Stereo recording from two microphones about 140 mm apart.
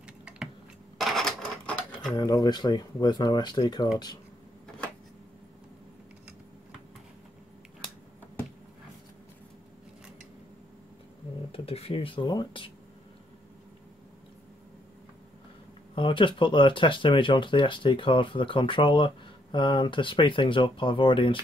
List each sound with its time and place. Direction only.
0.0 s typing: 5° right (ahead or behind)
0.9 s cash register: centre (ahead or behind)
2.1 s speech: 25° left (ahead or behind)
11.5 s speech: 45° left (ahead or behind)
15.9 s speech: 35° left (ahead or behind)